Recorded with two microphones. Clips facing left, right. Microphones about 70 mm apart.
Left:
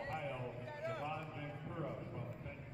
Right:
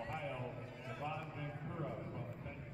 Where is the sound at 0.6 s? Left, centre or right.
Left.